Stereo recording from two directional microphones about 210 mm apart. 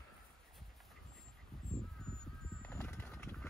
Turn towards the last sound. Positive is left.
turn(degrees=5)  # may be behind; listen again after turning